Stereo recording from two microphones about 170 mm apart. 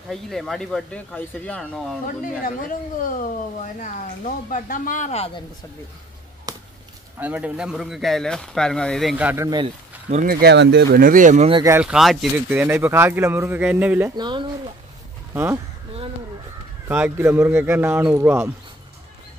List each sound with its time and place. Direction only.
0.1 s speech: centre (ahead or behind)
2.0 s speech: 55° left (ahead or behind); by 5.4 s 35° left (ahead or behind)
6.5 s a sound: 20° right (ahead or behind)
7.2 s speech: 10° right (ahead or behind)
9.1 s speech: 10° right (ahead or behind)
9.5 s speech: 30° right (ahead or behind)
10.2 s speech: 80° right; by 11.5 s 45° right (ahead or behind)
11.8 s speech: centre (ahead or behind)
12.4 s speech: 10° right (ahead or behind)
14.1 s speech: 25° right (ahead or behind)
15.3 s speech: 10° right (ahead or behind)
16.8 s speech: 10° right (ahead or behind)